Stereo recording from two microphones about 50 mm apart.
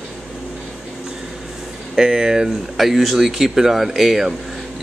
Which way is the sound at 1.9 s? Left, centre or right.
Centre.